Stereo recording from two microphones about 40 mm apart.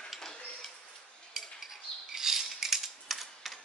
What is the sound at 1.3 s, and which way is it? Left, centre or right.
Cutlery, centre.